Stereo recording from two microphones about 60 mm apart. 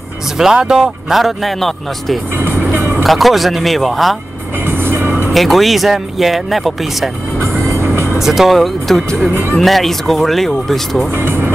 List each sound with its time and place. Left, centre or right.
0.4 s speech: centre
2.3 s vehicle: right
3.0 s speech: centre
4.6 s music: right
5.3 s speech: centre
7.6 s vehicle: right
8.2 s speech: centre
9.3 s speech: right
9.6 s speech: centre
11.1 s speech: right